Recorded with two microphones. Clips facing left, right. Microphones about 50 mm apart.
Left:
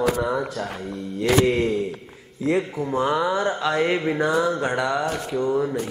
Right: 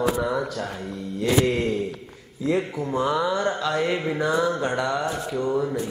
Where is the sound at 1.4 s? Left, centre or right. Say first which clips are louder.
Left 3 dB; centre.